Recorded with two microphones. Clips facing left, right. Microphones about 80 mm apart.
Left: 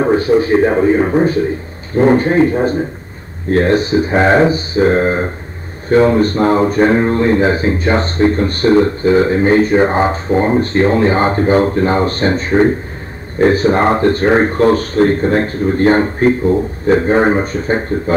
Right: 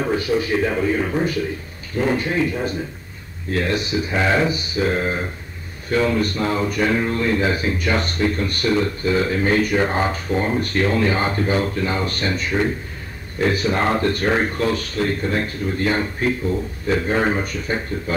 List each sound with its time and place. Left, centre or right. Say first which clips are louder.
0.0 s a man's voice: left 9 dB; left